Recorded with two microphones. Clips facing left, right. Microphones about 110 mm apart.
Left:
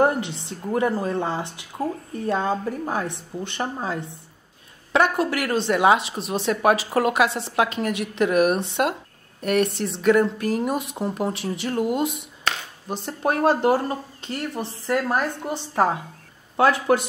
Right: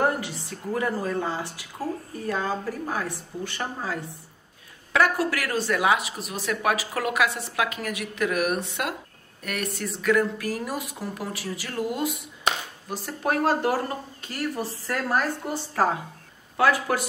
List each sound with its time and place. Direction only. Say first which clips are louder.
0.0 s a woman's voice: left 4 dB; 25° left (ahead or behind)